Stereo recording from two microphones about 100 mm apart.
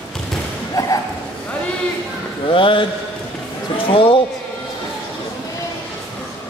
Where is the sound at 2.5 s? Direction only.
60° left (ahead or behind).